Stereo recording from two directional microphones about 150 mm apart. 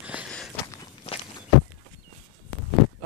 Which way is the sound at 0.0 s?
10° right (ahead or behind).